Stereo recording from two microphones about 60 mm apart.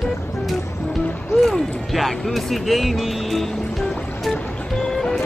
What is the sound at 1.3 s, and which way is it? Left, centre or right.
Speech, centre.